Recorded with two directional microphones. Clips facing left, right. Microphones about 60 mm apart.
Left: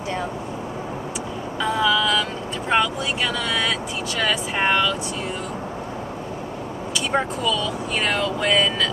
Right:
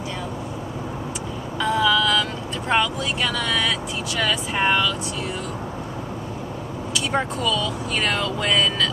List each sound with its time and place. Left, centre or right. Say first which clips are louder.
1.6 s vehicle: right 1 dB; centre
2.7 s speech: left 1 dB; centre
7.2 s speech: left 1 dB; centre